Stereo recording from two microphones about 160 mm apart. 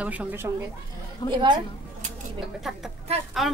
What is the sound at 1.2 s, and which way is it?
Speech, 25° left (ahead or behind).